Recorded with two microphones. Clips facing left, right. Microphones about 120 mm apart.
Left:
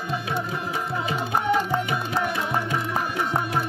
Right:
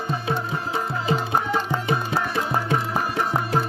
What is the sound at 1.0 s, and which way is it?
Music, 30° right (ahead or behind).